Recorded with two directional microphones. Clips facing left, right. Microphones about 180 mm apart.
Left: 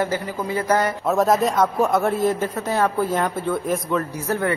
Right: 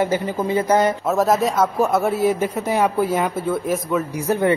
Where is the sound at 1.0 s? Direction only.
Centre (ahead or behind).